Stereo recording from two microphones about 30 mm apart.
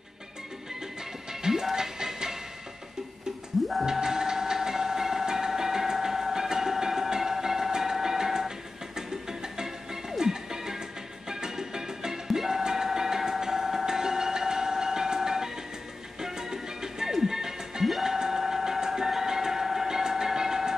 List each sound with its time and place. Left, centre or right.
1.3 s music: centre
3.6 s music: centre
3.9 s a sound: centre
11.2 s music: right
18.0 s a sound: centre
20.0 s train: centre